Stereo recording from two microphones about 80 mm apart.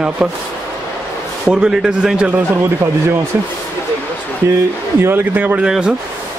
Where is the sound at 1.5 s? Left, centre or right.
Centre.